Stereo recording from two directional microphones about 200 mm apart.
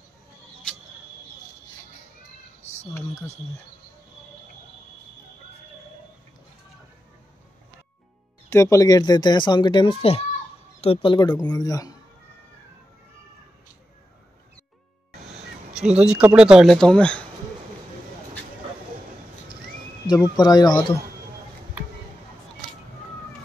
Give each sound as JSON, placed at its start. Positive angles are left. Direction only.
{"t": 2.6, "sound": "a sound", "side_deg": 35}
{"t": 2.9, "sound": "speech", "side_deg": 15}
{"t": 8.5, "sound": "speech", "side_deg": 15}
{"t": 16.0, "sound": "speech", "side_deg": -5}
{"t": 20.1, "sound": "speech", "side_deg": 20}